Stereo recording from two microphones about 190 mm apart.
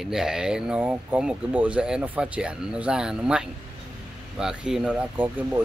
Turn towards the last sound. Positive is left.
turn(degrees=-10)  # may be behind; listen again after turning